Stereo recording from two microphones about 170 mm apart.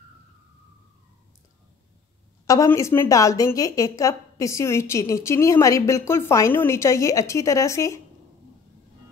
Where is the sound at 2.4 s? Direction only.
20° left (ahead or behind).